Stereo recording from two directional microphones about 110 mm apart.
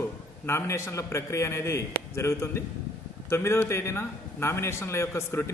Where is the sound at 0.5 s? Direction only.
25° left (ahead or behind).